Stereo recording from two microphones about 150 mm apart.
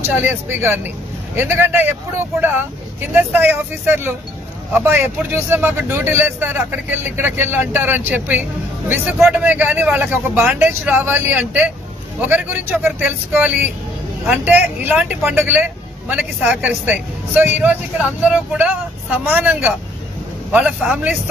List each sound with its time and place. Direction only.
0.0 s a man's voice: 15° right (ahead or behind)
3.0 s a man's voice: 15° right (ahead or behind)